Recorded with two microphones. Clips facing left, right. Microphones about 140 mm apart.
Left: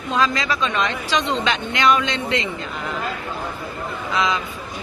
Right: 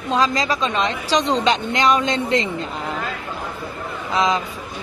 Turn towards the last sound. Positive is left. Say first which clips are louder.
# right 2 dB
turn(degrees=-35)  # may be behind; listen again after turning